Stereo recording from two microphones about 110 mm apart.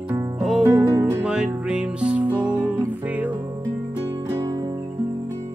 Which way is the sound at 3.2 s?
40° right (ahead or behind).